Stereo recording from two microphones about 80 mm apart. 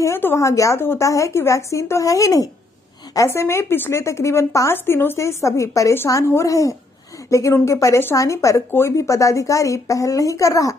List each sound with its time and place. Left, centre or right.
0.0 s speech: left
3.3 s a woman's voice: left